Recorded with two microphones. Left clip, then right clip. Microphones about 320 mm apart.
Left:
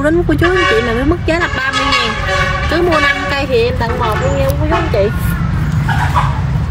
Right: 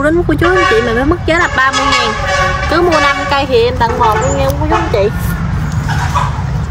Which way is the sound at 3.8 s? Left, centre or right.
Centre.